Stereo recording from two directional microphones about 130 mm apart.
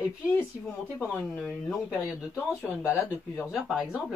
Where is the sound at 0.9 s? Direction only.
15° left (ahead or behind).